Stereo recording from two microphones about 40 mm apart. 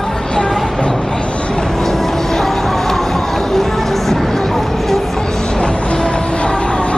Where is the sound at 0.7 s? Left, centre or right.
Left; by 5.2 s centre.